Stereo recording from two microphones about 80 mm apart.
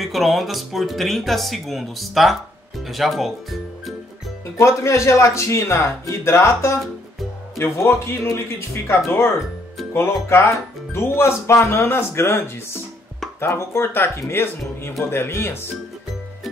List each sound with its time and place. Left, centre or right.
0.0 s speech: centre
4.6 s speech: left